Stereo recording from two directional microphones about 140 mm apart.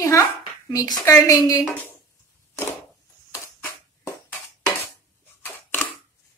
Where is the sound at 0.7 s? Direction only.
20° left (ahead or behind).